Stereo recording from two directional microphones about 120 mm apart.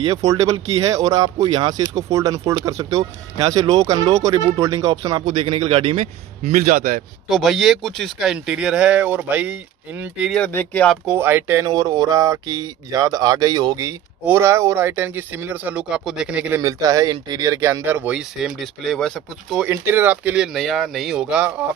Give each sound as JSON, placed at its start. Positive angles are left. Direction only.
{"t": 0.0, "sound": "speech", "side_deg": -30}
{"t": 7.2, "sound": "speech", "side_deg": 0}
{"t": 10.3, "sound": "speech", "side_deg": 15}
{"t": 11.1, "sound": "speech", "side_deg": -20}
{"t": 11.6, "sound": "speech", "side_deg": -35}
{"t": 14.2, "sound": "speech", "side_deg": -20}
{"t": 16.5, "sound": "speech", "side_deg": -30}
{"t": 18.4, "sound": "speech", "side_deg": 0}
{"t": 19.7, "sound": "speech", "side_deg": -20}